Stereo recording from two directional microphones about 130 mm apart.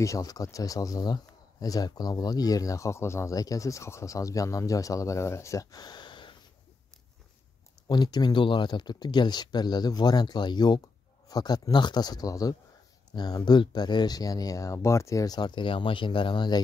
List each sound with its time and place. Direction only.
0.0 s speech: 25° left (ahead or behind)
7.9 s speech: 30° left (ahead or behind)